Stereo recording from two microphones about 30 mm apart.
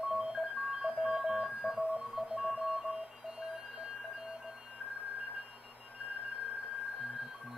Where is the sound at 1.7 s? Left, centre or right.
Centre.